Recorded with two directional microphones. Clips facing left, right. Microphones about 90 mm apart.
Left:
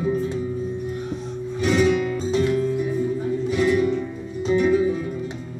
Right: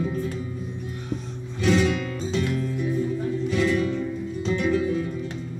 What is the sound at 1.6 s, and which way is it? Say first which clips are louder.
Music: left 3 dB; 15° left (ahead or behind).